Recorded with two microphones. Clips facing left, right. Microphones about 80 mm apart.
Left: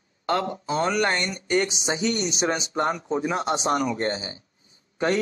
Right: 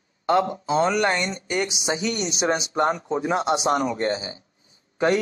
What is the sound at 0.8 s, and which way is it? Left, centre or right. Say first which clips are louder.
Speech: right 2 dB; centre.